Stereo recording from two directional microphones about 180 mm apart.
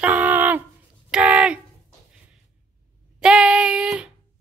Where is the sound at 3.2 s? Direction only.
5° right (ahead or behind).